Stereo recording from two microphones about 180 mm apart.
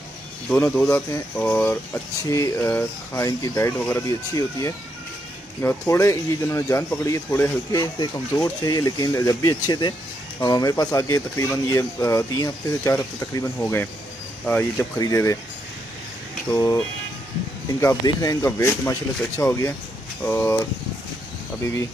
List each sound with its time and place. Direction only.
0.8 s speech: 15° left (ahead or behind)
16.5 s speech: 20° left (ahead or behind)